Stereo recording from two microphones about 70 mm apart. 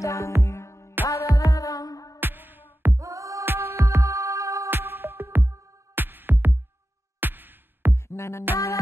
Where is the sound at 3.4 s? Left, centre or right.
Right.